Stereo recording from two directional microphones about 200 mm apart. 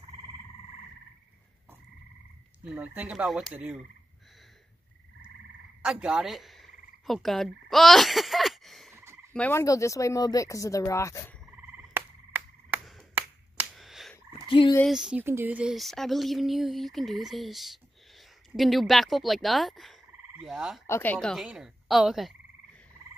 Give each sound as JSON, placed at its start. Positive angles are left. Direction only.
{"t": 2.6, "sound": "speech", "side_deg": -5}
{"t": 5.9, "sound": "frog", "side_deg": -5}
{"t": 8.9, "sound": "croak", "side_deg": -15}
{"t": 9.3, "sound": "speech", "side_deg": 10}
{"t": 11.4, "sound": "frog", "side_deg": -10}
{"t": 13.6, "sound": "a sound", "side_deg": 0}
{"t": 14.5, "sound": "fowl", "side_deg": 25}
{"t": 14.9, "sound": "speech", "side_deg": -5}
{"t": 20.8, "sound": "speech", "side_deg": 10}